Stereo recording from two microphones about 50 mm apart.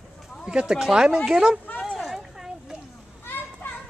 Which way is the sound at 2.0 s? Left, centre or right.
Centre.